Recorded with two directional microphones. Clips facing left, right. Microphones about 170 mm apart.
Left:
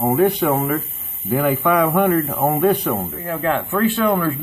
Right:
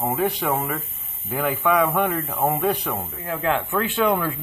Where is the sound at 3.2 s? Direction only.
15° right (ahead or behind).